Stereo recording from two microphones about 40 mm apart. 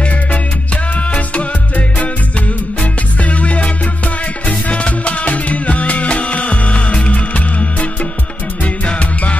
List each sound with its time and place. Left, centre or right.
0.0 s music: left